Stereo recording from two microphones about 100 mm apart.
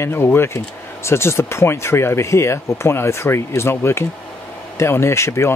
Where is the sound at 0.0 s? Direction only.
25° left (ahead or behind).